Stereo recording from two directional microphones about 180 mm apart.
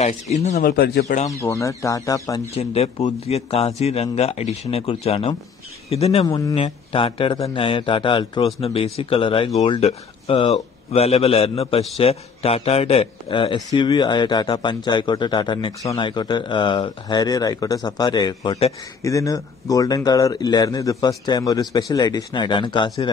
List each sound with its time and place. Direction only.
0.0 s a man's voice: 35° left (ahead or behind)
0.7 s speech: 60° left (ahead or behind)
1.4 s speech: 15° left (ahead or behind)
2.5 s a man's voice: 35° left (ahead or behind)